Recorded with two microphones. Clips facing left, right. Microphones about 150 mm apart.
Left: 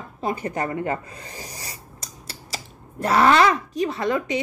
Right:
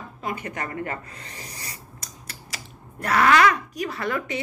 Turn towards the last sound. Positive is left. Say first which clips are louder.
# left 4 dB
turn(degrees=20)  # may be behind; listen again after turning